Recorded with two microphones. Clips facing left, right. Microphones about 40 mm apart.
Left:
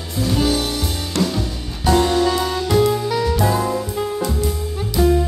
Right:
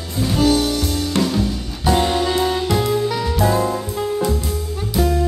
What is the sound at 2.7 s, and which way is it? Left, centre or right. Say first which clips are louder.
Music: left 2 dB; centre.